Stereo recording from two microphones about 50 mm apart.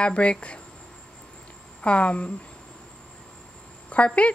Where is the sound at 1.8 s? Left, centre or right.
Left.